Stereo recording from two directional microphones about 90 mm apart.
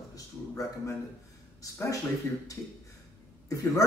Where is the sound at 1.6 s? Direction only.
40° left (ahead or behind).